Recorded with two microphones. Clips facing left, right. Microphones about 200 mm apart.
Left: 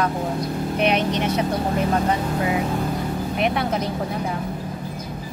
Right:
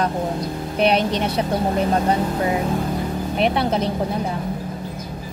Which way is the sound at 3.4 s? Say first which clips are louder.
Right 3 dB; 30° right (ahead or behind).